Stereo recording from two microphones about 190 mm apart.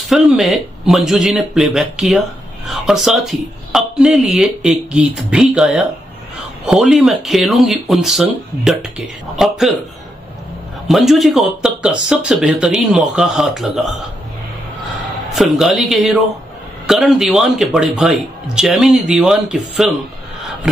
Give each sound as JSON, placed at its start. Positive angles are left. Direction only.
{"t": 0.1, "sound": "speech", "side_deg": 0}
{"t": 10.9, "sound": "speech", "side_deg": 0}
{"t": 15.3, "sound": "speech", "side_deg": 0}
{"t": 20.7, "sound": "a sound", "side_deg": -5}